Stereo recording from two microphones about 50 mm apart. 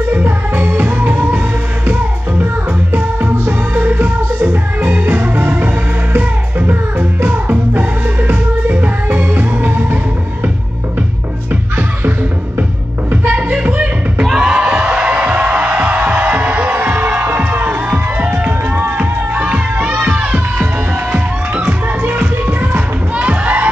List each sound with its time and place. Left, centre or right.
0.1 s music: right
2.9 s music: right
13.1 s music: right
13.5 s music: right
14.3 s a sound: centre
15.0 s music: right
22.0 s music: right